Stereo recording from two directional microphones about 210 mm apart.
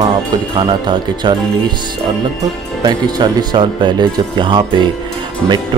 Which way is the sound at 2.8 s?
20° right (ahead or behind).